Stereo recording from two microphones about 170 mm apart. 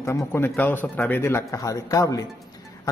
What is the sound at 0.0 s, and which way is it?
A man's voice, 15° left (ahead or behind).